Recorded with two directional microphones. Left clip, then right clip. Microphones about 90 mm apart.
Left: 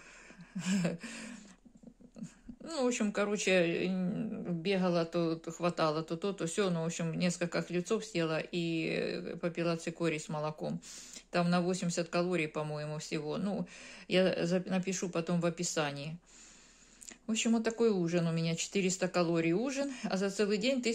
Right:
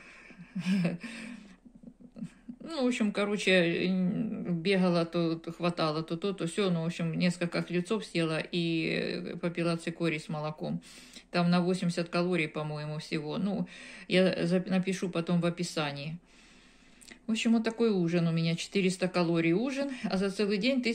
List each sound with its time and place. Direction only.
0.6 s a sound: 50° left (ahead or behind)
2.6 s speech: 25° left (ahead or behind)
5.1 s speech: 40° left (ahead or behind)
17.3 s speech: 35° left (ahead or behind)